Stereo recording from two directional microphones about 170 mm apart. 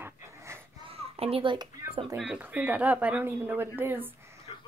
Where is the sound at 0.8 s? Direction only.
35° right (ahead or behind).